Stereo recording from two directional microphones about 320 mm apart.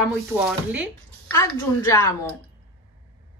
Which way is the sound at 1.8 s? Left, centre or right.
Centre.